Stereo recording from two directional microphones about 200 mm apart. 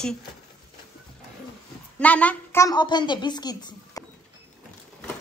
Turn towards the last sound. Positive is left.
turn(degrees=20)  # may be behind; listen again after turning